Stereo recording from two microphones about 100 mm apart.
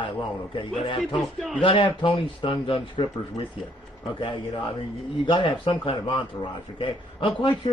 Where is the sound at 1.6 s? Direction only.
60° left (ahead or behind).